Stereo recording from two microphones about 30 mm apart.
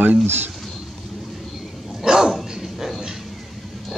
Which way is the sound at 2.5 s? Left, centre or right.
Centre.